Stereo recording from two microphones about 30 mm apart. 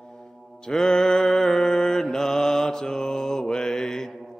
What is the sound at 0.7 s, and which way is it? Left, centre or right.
Mantra, left.